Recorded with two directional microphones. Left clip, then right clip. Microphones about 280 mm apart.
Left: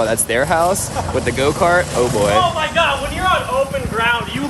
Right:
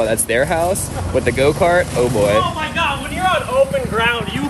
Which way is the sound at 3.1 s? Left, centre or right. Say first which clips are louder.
Even; centre.